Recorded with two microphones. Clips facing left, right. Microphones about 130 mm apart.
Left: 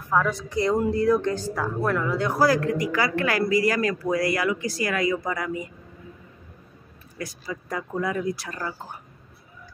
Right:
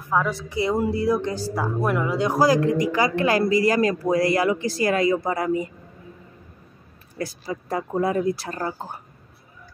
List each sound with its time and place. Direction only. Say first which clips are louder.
0.1 s a woman's voice: even; 5° right (ahead or behind); by 5.7 s 30° right (ahead or behind)
7.2 s speech: right 4 dB; 30° right (ahead or behind)